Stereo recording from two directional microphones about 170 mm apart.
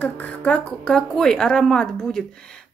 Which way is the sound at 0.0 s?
10° left (ahead or behind).